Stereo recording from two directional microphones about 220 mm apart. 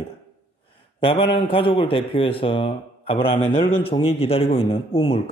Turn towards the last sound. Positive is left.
turn(degrees=25)  # may be behind; listen again after turning